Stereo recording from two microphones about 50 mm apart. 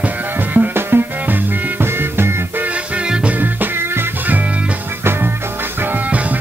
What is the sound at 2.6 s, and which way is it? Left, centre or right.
Music, right.